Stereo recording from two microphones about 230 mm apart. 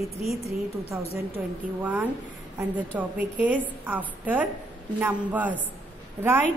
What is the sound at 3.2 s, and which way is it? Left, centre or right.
A woman's voice, centre.